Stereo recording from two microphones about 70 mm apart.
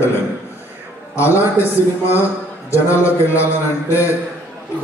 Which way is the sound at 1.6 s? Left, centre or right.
Left.